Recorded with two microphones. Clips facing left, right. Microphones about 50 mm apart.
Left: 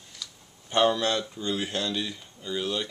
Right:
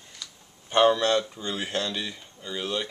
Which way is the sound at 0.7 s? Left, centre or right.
Centre.